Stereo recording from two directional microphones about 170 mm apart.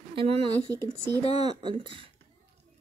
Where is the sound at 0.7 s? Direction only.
15° left (ahead or behind).